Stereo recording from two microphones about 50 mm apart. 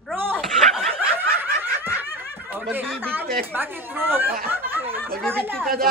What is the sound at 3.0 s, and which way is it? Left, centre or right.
Speech, right.